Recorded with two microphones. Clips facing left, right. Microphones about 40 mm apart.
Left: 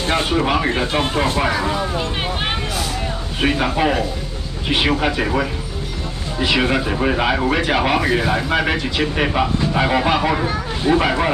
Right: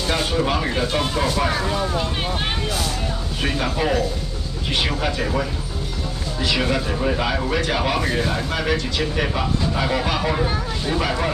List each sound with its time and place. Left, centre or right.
0.1 s speech: left
1.5 s speech: left
3.4 s speech: left